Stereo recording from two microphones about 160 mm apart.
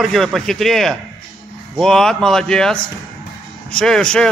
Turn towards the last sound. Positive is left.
turn(degrees=5)  # may be behind; listen again after turning